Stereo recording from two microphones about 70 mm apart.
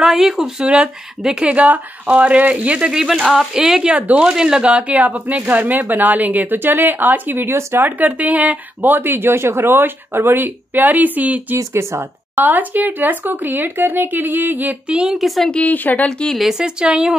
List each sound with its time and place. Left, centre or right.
0.0 s speech: centre; by 11.4 s right
11.5 s speech: right
12.4 s speech: right
15.1 s speech: centre
15.5 s speech: left
16.1 s speech: centre
16.3 s speech: centre